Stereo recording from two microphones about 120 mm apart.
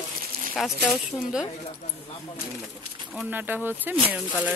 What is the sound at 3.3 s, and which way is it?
Speech, 15° right (ahead or behind).